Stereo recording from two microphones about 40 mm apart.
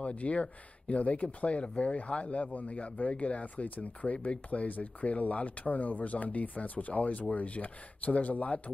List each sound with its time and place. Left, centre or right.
0.0 s speech: left